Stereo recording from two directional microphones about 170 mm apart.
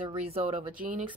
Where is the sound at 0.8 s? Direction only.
50° right (ahead or behind).